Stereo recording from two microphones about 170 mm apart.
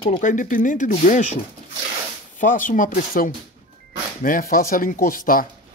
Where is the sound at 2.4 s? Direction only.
50° left (ahead or behind).